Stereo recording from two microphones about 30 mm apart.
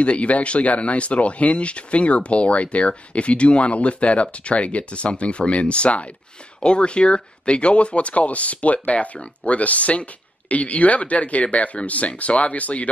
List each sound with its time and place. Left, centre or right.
0.0 s speech: left